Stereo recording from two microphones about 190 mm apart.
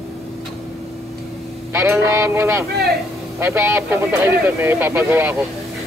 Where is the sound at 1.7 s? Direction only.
15° right (ahead or behind).